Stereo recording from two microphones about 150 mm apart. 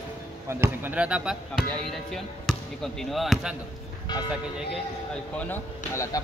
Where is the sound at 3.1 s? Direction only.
Centre (ahead or behind).